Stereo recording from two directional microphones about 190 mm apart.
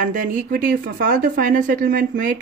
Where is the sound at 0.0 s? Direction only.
45° right (ahead or behind).